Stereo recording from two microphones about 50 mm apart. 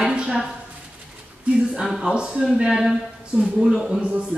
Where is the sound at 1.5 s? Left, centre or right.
Right.